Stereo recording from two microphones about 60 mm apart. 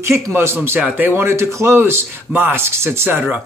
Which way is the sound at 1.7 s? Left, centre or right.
Right.